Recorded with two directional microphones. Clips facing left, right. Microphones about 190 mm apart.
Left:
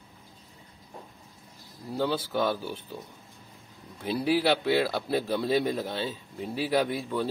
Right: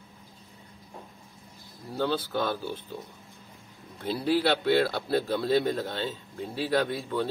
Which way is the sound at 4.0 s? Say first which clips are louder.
Even; 10° left (ahead or behind).